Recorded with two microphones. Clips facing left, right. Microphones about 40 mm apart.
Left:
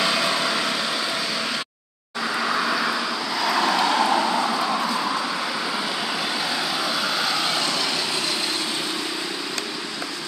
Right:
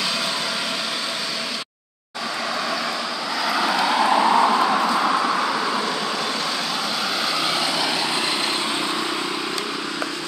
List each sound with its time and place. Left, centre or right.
2.5 s vehicle: centre
3.4 s vehicle: centre
4.2 s a sound: centre